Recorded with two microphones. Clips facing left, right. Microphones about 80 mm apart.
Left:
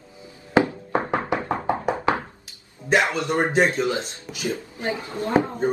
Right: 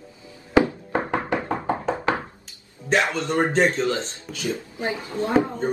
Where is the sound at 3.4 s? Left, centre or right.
Centre.